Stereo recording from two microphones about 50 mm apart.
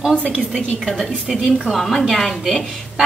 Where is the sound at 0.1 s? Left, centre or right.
Centre.